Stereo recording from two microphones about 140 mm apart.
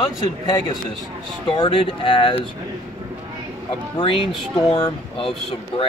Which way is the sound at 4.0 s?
40° left (ahead or behind).